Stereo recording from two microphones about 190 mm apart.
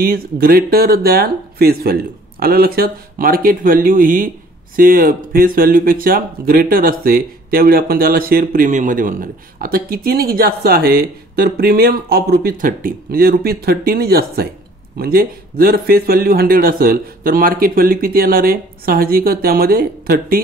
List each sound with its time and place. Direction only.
0.0 s speech: 50° right (ahead or behind)